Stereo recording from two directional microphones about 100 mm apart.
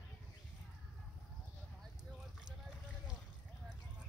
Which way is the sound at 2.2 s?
5° right (ahead or behind).